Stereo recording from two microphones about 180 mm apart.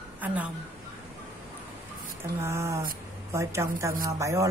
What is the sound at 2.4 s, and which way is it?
A woman's voice, 15° right (ahead or behind).